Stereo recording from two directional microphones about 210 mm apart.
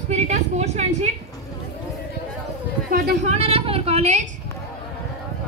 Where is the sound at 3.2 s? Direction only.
30° right (ahead or behind).